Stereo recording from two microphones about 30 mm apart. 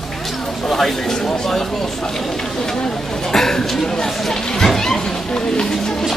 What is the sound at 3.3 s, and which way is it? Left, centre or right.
Speech, centre.